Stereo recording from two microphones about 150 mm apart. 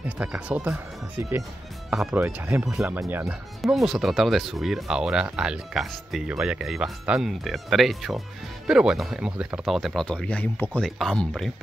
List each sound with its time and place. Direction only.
0.2 s speech: 10° right (ahead or behind)
1.9 s speech: 5° right (ahead or behind)
3.6 s speech: centre (ahead or behind)